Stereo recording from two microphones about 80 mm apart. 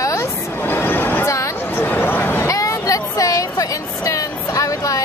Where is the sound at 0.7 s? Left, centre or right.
Left.